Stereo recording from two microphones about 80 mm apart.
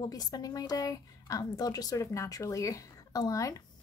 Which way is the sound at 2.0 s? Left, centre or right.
Left.